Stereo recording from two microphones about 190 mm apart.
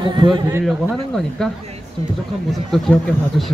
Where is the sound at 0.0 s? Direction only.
25° right (ahead or behind).